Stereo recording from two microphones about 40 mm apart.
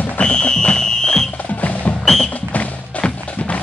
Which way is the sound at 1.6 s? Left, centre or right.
Left.